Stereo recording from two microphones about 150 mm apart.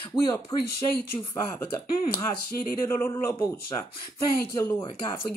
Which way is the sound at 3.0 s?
20° left (ahead or behind).